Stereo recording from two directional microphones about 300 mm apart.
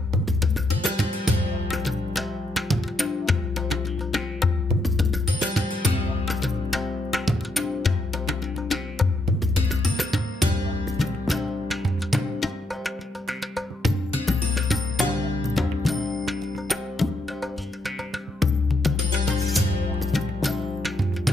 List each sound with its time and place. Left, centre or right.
0.8 s music: centre